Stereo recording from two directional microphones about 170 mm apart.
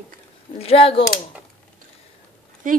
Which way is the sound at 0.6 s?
35° left (ahead or behind).